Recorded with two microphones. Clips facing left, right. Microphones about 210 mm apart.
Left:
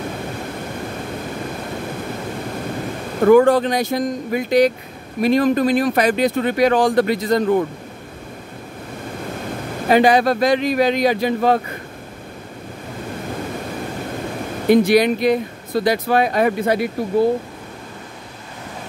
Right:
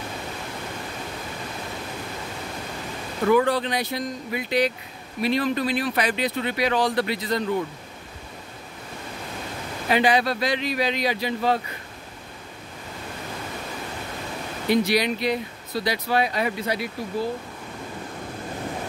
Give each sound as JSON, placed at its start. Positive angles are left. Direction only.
{"t": 3.2, "sound": "speech", "side_deg": 50}
{"t": 9.8, "sound": "speech", "side_deg": 45}
{"t": 14.7, "sound": "speech", "side_deg": 50}